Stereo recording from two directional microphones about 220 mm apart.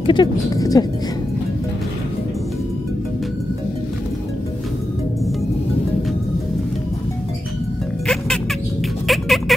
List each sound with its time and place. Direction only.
0.0 s speech: 20° left (ahead or behind)
9.0 s music: centre (ahead or behind)